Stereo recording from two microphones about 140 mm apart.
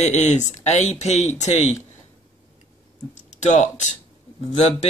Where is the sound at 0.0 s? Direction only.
55° left (ahead or behind).